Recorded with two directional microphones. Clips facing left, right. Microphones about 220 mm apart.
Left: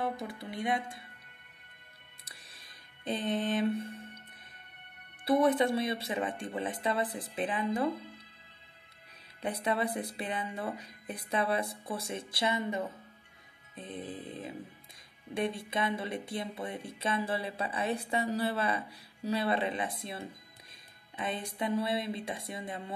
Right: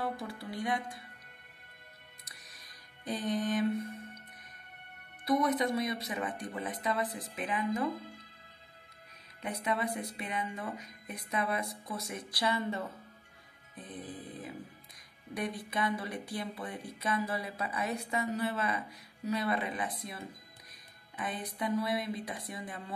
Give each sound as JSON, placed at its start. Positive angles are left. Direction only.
{"t": 0.0, "sound": "speech", "side_deg": 20}
{"t": 2.2, "sound": "music", "side_deg": 30}
{"t": 5.2, "sound": "speech", "side_deg": 30}
{"t": 9.4, "sound": "speech", "side_deg": 30}
{"t": 21.3, "sound": "speech", "side_deg": 25}